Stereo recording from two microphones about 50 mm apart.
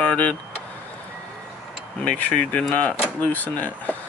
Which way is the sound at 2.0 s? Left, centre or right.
Left.